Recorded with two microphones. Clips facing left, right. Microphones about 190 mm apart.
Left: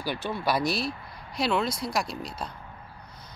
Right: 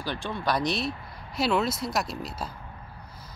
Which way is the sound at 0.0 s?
10° left (ahead or behind).